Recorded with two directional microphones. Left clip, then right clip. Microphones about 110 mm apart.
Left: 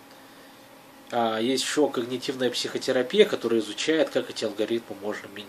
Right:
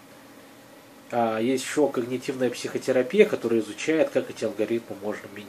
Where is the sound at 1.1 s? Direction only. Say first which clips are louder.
Right 1 dB; 20° left (ahead or behind).